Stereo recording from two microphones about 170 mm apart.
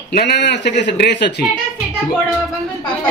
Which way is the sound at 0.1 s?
75° left (ahead or behind).